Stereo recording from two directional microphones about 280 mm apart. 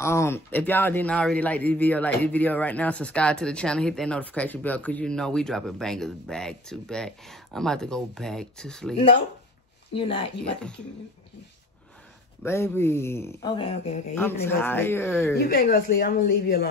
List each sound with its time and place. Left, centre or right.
0.0 s a man's voice: centre
8.9 s speech: centre
12.4 s speech: centre
14.1 s speech: centre
15.3 s speech: left